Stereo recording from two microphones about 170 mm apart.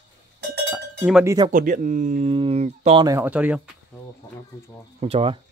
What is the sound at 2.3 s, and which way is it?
Speech, 35° right (ahead or behind).